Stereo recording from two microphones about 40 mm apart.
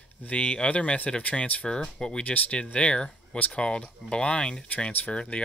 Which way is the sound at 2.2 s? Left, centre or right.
Left.